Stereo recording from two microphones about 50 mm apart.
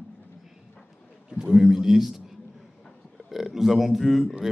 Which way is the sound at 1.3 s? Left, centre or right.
Centre.